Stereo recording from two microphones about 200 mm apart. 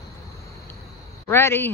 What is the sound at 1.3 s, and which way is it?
Speech, 10° left (ahead or behind).